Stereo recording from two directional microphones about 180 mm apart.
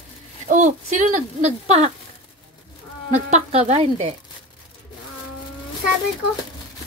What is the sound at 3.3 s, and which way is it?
Speech, 40° right (ahead or behind).